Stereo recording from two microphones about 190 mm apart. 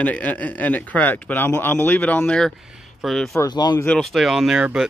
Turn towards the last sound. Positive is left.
turn(degrees=-5)  # may be behind; listen again after turning